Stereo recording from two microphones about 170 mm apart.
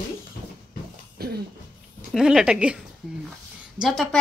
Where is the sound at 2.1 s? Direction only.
5° right (ahead or behind).